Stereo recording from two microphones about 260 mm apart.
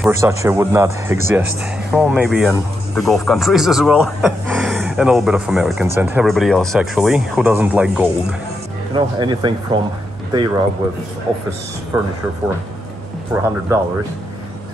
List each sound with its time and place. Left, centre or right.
0.0 s speech: centre
8.9 s speech: centre
11.9 s speech: centre
13.3 s speech: centre